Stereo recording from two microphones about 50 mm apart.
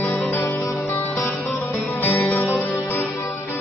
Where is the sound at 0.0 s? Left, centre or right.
Left.